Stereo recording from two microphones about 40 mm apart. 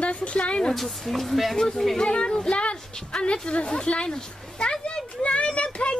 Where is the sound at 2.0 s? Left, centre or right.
Left.